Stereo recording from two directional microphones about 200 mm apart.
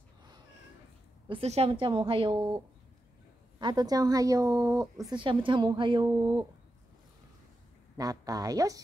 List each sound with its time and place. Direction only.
1.3 s a woman's voice: 30° right (ahead or behind)
8.0 s a woman's voice: 20° right (ahead or behind)